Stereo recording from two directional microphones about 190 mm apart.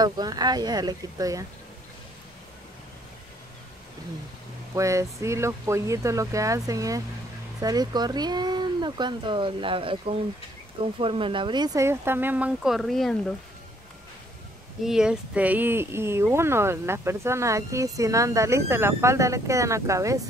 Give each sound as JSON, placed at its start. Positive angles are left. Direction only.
{"t": 0.0, "sound": "speech", "side_deg": -20}
{"t": 4.7, "sound": "speech", "side_deg": -15}
{"t": 14.8, "sound": "speech", "side_deg": -5}